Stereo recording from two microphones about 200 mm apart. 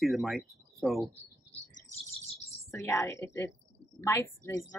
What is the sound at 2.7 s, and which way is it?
Speech, 15° left (ahead or behind).